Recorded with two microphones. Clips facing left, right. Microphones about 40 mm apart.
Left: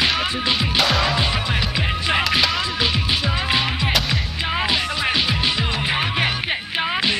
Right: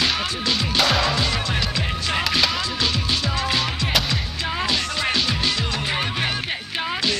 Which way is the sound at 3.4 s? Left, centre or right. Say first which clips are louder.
Left 2 dB; left.